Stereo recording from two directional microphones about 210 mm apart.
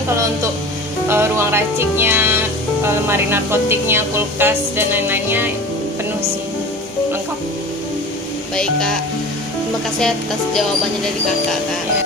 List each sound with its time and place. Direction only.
0.1 s speech: 15° right (ahead or behind)
9.9 s speech: centre (ahead or behind)